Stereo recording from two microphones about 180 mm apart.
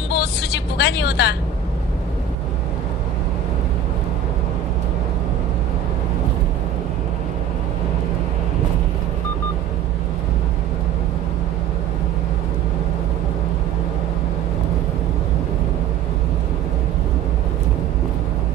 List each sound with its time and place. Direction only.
0.1 s vehicle: 65° left (ahead or behind)